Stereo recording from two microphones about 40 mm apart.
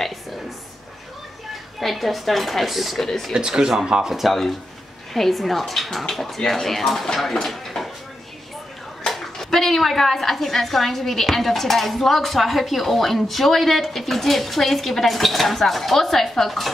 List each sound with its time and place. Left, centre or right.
1.8 s a woman's voice: centre
3.3 s speech: centre
5.1 s a woman's voice: centre
9.4 s a woman's voice: centre